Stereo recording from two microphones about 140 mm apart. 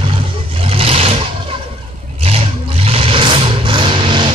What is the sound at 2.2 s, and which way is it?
Vehicle, 45° right (ahead or behind).